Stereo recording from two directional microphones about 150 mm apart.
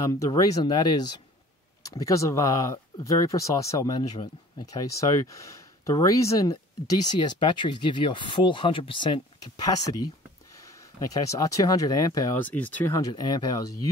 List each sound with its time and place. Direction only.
0.0 s speech: 20° left (ahead or behind)
6.5 s speech: 30° left (ahead or behind)
11.2 s speech: 25° left (ahead or behind)
12.4 s speech: 10° left (ahead or behind)
13.1 s speech: 25° left (ahead or behind)